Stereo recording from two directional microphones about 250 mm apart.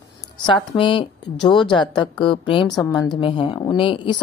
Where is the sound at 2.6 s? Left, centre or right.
Centre.